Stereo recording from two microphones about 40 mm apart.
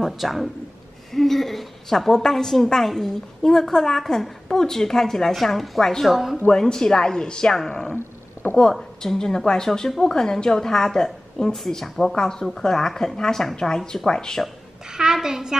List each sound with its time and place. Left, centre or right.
0.0 s a woman's voice: centre
6.0 s a woman's voice: centre
6.5 s a woman's voice: centre
7.9 s wild animals: left
9.0 s a woman's voice: centre
11.5 s a woman's voice: centre
14.9 s a woman's voice: centre